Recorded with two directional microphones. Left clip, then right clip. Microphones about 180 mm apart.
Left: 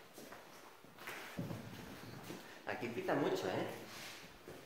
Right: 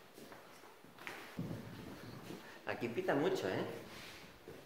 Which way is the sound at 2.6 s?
50° right (ahead or behind).